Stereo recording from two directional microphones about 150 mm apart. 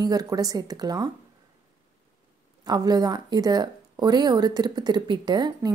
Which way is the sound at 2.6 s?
25° right (ahead or behind).